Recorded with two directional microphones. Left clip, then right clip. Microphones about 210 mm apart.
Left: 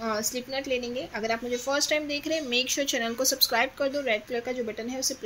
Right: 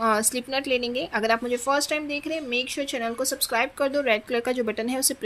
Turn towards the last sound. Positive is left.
turn(degrees=-30)  # may be behind; listen again after turning